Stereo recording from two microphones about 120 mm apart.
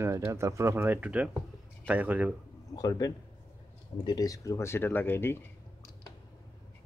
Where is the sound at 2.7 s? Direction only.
30° left (ahead or behind).